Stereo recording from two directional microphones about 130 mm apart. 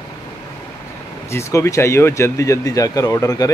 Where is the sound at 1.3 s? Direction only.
20° left (ahead or behind).